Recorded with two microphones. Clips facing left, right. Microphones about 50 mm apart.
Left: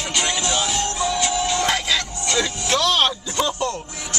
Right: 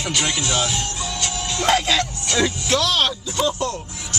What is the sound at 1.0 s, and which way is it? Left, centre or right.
Music, centre.